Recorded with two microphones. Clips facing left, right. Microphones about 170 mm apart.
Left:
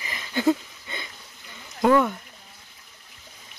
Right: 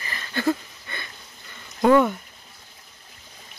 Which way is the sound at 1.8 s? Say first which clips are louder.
Right 2 dB; centre (ahead or behind).